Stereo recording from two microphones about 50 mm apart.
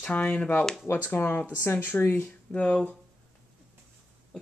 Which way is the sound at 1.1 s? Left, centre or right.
Left.